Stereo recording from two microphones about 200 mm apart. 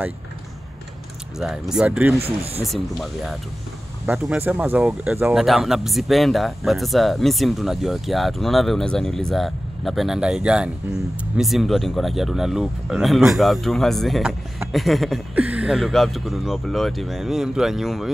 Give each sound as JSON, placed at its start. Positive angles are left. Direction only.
{"t": 1.4, "sound": "speech", "side_deg": 0}
{"t": 2.2, "sound": "speech", "side_deg": -30}
{"t": 2.6, "sound": "speech", "side_deg": 0}